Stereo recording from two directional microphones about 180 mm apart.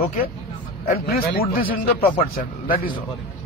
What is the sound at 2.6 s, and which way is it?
Speech, 50° left (ahead or behind).